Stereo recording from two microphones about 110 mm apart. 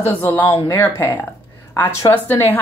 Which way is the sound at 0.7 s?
20° left (ahead or behind).